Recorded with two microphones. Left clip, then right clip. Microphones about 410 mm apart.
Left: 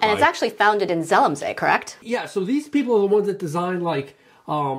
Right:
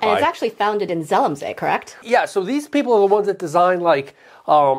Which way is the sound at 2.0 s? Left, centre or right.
Right.